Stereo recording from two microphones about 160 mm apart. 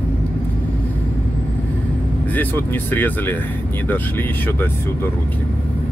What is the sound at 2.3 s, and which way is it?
Speech, 10° left (ahead or behind).